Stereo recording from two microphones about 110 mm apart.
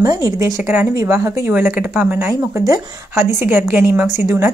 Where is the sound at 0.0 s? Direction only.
35° right (ahead or behind).